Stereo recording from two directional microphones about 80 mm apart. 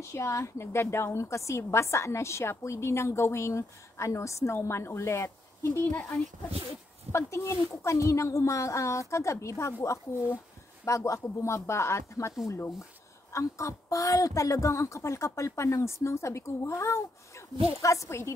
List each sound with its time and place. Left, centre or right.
0.1 s a woman's voice: left
5.9 s speech: left
7.1 s a woman's voice: left